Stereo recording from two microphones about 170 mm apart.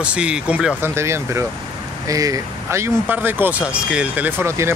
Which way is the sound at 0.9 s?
15° right (ahead or behind).